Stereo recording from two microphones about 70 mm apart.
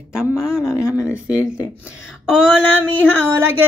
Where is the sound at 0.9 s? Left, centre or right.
Right.